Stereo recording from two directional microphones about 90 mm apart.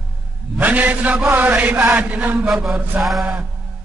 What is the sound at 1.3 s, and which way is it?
Chant, 20° right (ahead or behind).